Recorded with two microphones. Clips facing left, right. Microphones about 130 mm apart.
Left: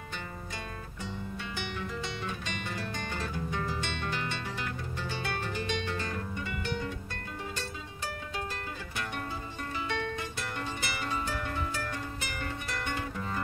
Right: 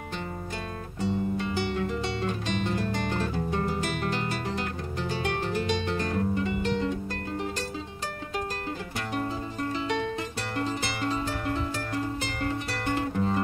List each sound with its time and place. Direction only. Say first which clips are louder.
1.0 s music: right 12 dB; 35° right (ahead or behind)
10.6 s music: right 8 dB; 30° right (ahead or behind)